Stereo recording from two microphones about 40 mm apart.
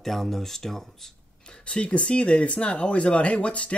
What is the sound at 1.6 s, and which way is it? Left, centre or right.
Speech, left.